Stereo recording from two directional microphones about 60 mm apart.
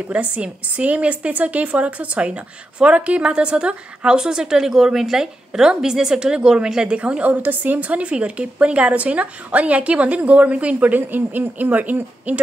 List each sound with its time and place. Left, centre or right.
0.1 s a woman's voice: right